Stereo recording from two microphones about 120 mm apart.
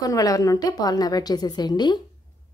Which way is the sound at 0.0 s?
30° left (ahead or behind).